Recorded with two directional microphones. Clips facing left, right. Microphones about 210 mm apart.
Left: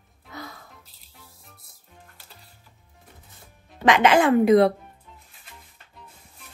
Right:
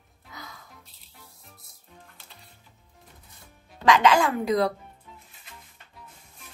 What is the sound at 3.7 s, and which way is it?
Speech, 20° left (ahead or behind).